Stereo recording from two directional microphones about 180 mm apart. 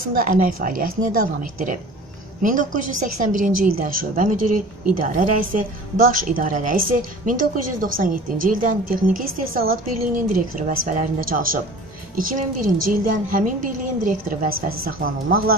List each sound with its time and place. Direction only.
0.0 s a woman's voice: 50° right (ahead or behind)